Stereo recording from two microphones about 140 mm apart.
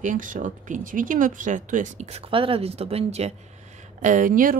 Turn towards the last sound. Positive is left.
turn(degrees=-75)  # may be behind; listen again after turning